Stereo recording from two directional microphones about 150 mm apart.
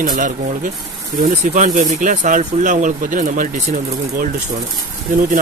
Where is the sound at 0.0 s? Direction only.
65° right (ahead or behind).